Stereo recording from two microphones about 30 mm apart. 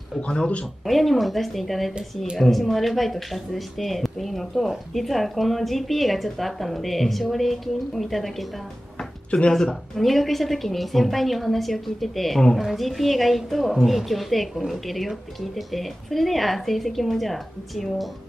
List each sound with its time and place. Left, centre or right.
0.2 s speech: left
0.8 s speech: centre
9.3 s speech: left
9.9 s speech: centre